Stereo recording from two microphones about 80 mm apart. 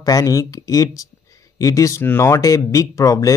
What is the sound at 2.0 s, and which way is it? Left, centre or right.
Speech, left.